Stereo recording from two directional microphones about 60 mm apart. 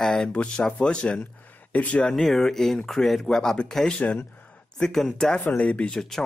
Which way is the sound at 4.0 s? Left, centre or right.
Left.